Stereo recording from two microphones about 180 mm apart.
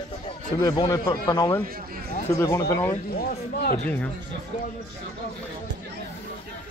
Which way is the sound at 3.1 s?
55° left (ahead or behind).